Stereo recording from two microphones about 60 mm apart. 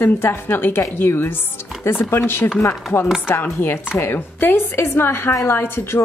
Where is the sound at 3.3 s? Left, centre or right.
Left.